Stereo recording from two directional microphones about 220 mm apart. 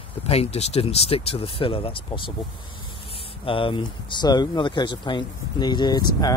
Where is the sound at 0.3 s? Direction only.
30° left (ahead or behind).